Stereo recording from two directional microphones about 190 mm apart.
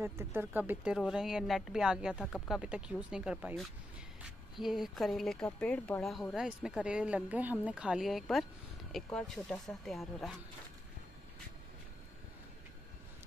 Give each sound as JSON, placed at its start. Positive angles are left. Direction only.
{"t": 0.0, "sound": "speech", "side_deg": -10}